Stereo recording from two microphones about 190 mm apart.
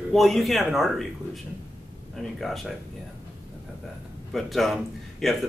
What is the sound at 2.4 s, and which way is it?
Speech, centre (ahead or behind).